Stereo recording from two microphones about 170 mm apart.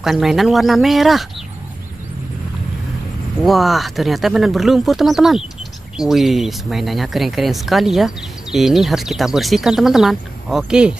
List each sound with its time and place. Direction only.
0.0 s speech: centre (ahead or behind)
3.4 s speech: centre (ahead or behind)